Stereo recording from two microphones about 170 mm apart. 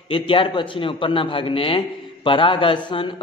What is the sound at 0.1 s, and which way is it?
A man's voice, 30° left (ahead or behind).